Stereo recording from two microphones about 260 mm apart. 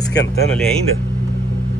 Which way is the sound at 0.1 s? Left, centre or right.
Left.